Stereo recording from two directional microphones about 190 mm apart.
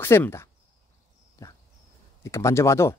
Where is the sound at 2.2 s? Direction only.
15° left (ahead or behind).